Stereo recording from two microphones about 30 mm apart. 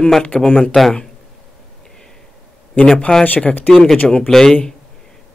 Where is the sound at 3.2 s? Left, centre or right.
Left.